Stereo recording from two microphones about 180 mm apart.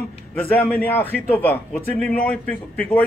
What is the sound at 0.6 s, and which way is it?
A man's voice, 10° left (ahead or behind).